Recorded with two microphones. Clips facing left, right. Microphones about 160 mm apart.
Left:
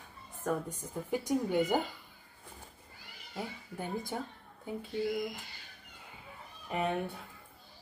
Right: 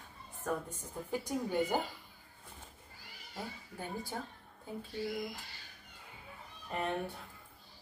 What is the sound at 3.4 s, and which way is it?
Speech, 15° left (ahead or behind).